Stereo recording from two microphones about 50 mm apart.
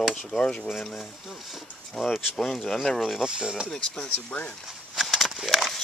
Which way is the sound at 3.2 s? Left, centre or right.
Centre.